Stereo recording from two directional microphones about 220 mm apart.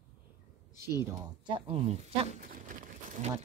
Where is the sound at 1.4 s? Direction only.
25° right (ahead or behind).